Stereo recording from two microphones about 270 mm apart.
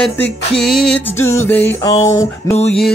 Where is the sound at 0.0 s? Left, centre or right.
Centre.